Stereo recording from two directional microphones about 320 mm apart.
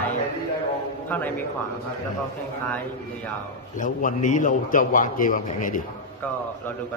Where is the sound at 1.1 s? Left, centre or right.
Centre.